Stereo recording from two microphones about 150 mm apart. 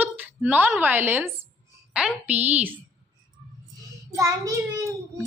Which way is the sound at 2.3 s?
10° right (ahead or behind).